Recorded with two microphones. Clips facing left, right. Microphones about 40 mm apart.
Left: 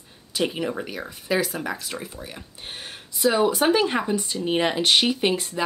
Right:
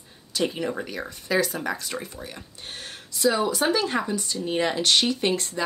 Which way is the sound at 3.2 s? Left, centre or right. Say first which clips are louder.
Left 2 dB; left.